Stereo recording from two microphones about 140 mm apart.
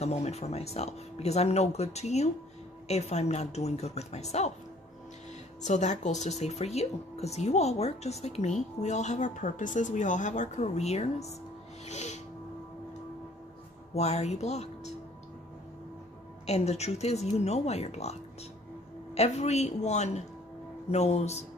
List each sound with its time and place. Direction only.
0.0 s speech: 50° left (ahead or behind)
5.6 s speech: 55° left (ahead or behind)
11.8 s music: 55° left (ahead or behind)
13.9 s speech: 50° left (ahead or behind)
16.4 s speech: 50° left (ahead or behind)
19.1 s speech: 50° left (ahead or behind)